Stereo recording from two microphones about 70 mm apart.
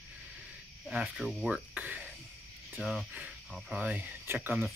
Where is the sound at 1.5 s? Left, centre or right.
Centre.